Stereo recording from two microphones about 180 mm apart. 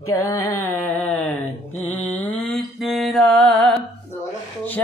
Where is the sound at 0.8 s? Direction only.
5° left (ahead or behind).